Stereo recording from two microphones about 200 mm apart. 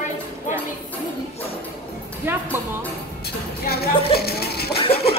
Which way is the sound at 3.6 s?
50° left (ahead or behind).